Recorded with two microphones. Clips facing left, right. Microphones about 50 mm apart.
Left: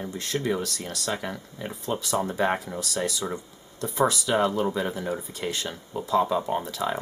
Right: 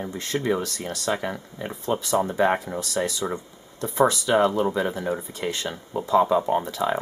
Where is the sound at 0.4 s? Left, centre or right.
Right.